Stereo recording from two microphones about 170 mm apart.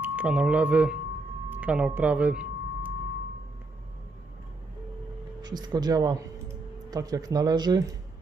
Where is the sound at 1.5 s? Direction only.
10° right (ahead or behind).